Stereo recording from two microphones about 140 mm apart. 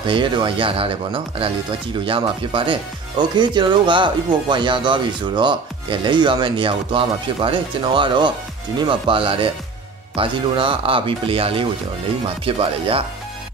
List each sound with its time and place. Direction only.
0.0 s speech: 35° right (ahead or behind)